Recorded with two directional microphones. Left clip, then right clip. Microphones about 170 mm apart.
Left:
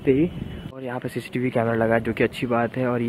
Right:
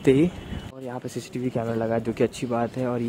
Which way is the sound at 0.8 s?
10° right (ahead or behind).